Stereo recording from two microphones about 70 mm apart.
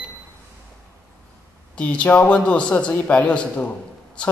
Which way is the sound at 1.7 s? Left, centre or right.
Centre.